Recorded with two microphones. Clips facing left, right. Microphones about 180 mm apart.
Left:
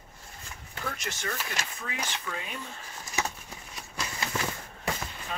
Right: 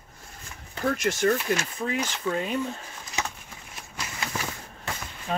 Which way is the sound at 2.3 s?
30° right (ahead or behind).